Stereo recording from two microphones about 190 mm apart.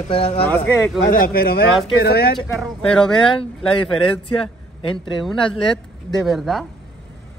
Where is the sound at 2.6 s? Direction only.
5° left (ahead or behind).